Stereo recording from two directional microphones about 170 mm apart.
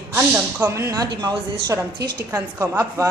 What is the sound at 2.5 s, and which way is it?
Speech, 20° right (ahead or behind).